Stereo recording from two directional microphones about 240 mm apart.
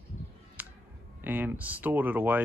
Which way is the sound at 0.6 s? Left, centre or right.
Centre.